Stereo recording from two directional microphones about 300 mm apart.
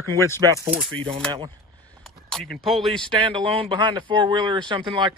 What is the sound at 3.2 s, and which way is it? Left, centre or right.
Speech, centre.